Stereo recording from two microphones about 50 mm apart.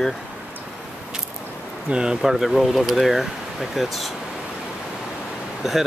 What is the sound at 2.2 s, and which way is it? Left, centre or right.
Speech, centre.